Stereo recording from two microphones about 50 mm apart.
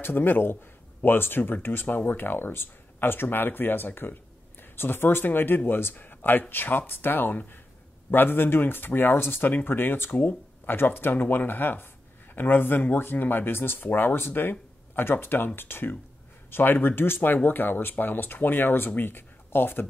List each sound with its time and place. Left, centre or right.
0.0 s speech: left